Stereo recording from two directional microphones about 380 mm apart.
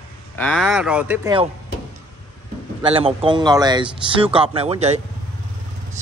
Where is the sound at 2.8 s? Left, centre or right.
Centre.